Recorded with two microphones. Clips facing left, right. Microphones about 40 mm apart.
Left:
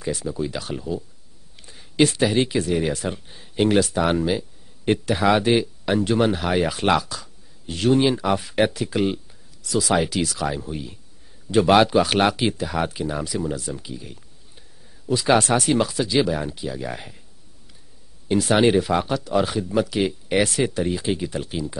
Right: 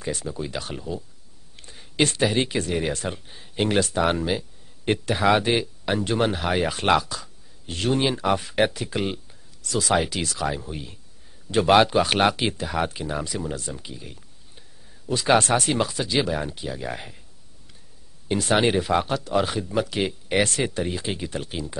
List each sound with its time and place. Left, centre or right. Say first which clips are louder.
0.0 s speech: left 4 dB; centre
1.6 s a sound: left 4 dB; centre
2.1 s speech: left 2 dB; centre
18.3 s speech: left 3 dB; centre